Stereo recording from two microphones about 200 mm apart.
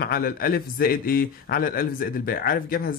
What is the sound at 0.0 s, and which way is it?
A man's voice, 50° left (ahead or behind).